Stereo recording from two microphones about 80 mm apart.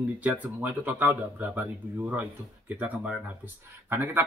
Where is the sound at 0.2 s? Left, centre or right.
Centre.